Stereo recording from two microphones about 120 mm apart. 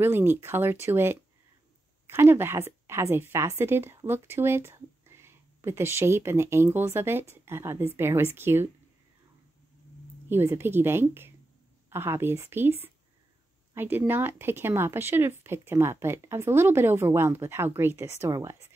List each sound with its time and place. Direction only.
0.0 s a woman's voice: 20° right (ahead or behind)
10.2 s a woman's voice: 20° right (ahead or behind)